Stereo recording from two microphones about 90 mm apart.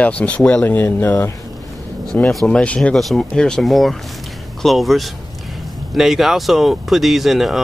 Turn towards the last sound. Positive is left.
turn(degrees=0)  # may be behind; listen again after turning